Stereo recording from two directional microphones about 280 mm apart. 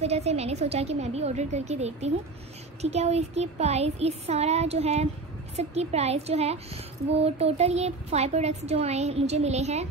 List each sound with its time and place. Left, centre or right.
0.0 s speech: right